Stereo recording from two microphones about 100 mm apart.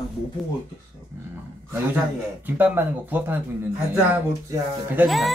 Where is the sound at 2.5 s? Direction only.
15° right (ahead or behind).